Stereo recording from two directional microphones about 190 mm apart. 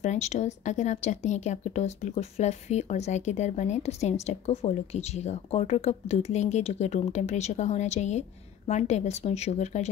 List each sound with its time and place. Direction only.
0.0 s speech: 35° left (ahead or behind)